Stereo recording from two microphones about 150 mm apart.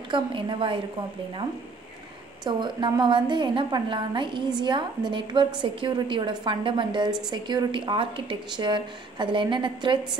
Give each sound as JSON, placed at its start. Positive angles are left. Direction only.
{"t": 0.1, "sound": "a woman's voice", "side_deg": -35}
{"t": 2.4, "sound": "a woman's voice", "side_deg": -30}